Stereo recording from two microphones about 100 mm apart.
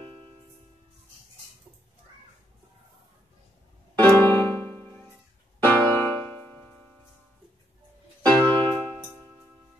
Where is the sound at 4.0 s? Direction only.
20° left (ahead or behind).